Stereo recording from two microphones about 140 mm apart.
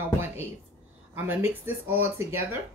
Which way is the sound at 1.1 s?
15° right (ahead or behind).